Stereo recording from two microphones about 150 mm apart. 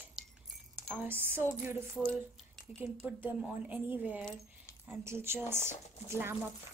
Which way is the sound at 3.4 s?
10° right (ahead or behind).